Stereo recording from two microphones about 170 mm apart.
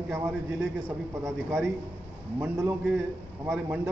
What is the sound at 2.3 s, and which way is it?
Speech, 15° right (ahead or behind).